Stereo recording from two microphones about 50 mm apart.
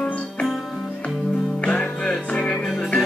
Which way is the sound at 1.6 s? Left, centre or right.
Centre.